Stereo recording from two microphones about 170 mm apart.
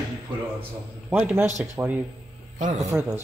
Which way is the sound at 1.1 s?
10° right (ahead or behind).